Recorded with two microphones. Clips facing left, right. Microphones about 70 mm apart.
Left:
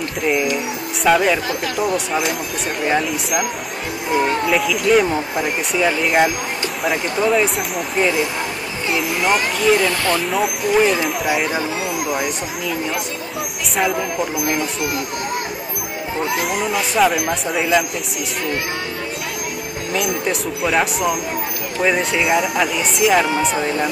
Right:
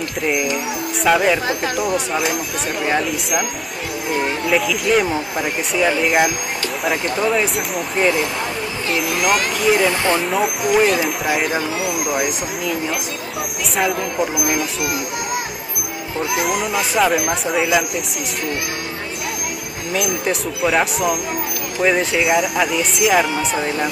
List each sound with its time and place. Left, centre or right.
1.0 s speech: centre
4.5 s speech: centre
9.2 s speech: centre
10.2 s speech: centre
11.8 s speech: centre
14.2 s speech: centre
16.7 s speech: centre
19.9 s speech: centre
22.2 s speech: centre